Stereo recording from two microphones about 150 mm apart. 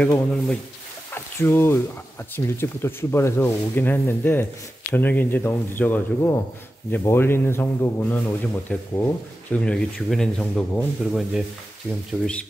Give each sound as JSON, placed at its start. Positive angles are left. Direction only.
{"t": 0.0, "sound": "speech", "side_deg": 5}
{"t": 1.1, "sound": "a sound", "side_deg": 15}
{"t": 2.3, "sound": "speech", "side_deg": 15}